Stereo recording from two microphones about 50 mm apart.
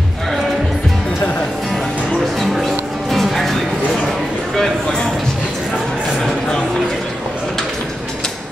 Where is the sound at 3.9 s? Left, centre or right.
Centre.